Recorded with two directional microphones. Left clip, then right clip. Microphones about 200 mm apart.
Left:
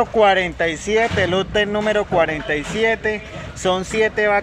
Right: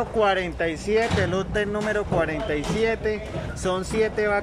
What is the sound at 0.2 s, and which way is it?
Speech, centre (ahead or behind).